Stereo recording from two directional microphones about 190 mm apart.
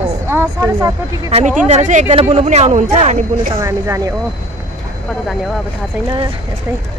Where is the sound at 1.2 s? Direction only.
35° right (ahead or behind).